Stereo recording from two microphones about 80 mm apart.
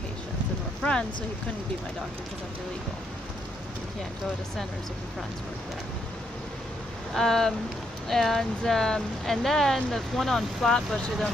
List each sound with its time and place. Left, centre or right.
7.2 s speech: centre